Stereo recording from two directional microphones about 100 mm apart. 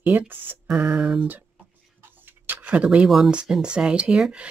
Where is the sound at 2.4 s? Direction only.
15° right (ahead or behind).